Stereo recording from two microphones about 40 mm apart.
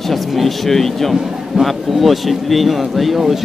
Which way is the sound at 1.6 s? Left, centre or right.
Centre.